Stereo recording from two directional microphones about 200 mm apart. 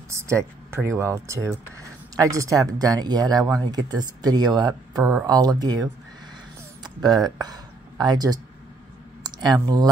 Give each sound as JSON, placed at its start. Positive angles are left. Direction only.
{"t": 0.1, "sound": "speech", "side_deg": -15}
{"t": 6.8, "sound": "a sound", "side_deg": -20}
{"t": 7.2, "sound": "speech", "side_deg": -20}